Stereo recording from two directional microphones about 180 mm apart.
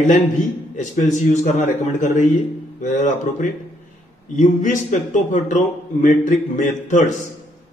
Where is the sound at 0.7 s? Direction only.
40° left (ahead or behind).